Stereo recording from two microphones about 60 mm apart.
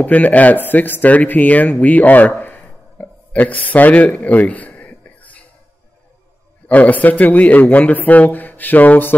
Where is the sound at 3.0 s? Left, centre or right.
Left.